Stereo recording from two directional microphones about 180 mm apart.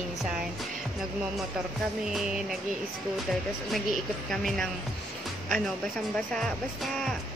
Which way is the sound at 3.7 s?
Centre (ahead or behind).